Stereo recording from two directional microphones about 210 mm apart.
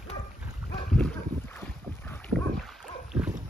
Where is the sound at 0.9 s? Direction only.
5° left (ahead or behind).